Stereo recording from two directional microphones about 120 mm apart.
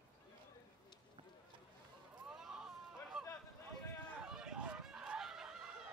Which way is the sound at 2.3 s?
5° right (ahead or behind).